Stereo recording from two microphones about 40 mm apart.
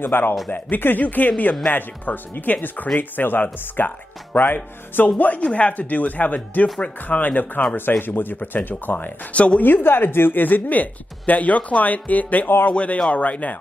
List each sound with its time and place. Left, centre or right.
0.0 s speech: left
5.5 s speech: left
8.0 s speech: left
9.3 s speech: left
9.6 s speech: left
12.7 s speech: left